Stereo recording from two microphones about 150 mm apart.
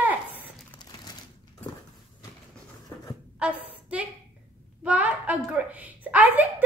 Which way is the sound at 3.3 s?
5° right (ahead or behind).